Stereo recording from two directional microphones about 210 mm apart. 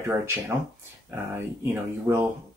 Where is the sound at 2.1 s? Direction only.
15° right (ahead or behind).